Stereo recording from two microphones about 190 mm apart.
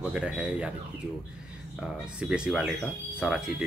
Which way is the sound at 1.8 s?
5° right (ahead or behind).